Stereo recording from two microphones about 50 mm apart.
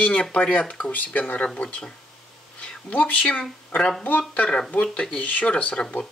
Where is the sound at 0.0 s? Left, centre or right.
Left.